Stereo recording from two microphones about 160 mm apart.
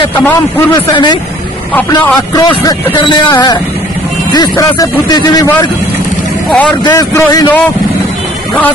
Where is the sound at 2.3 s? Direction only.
25° left (ahead or behind).